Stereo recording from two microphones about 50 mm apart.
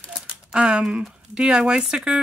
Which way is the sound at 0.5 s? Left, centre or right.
Centre.